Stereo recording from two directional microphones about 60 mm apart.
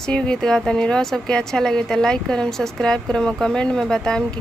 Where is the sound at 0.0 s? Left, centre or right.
Centre.